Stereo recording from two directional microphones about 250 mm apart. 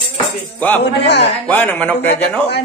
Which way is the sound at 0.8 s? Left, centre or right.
Left.